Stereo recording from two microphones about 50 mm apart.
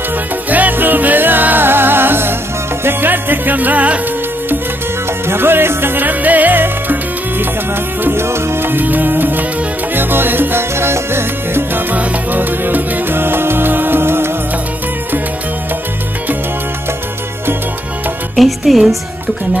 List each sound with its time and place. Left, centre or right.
0.5 s music: right
5.2 s music: right
8.0 s music: right
11.9 s music: right
18.3 s speech: centre